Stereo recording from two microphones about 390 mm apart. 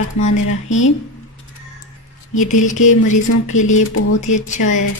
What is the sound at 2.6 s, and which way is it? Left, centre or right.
Speech, centre.